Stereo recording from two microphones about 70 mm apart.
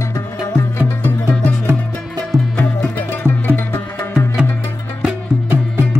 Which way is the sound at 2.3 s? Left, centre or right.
Right.